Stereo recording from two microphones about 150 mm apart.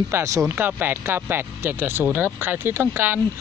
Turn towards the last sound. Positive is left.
turn(degrees=-15)  # may be behind; listen again after turning